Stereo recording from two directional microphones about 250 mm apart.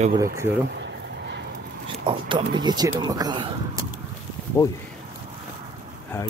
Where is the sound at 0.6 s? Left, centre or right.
Right.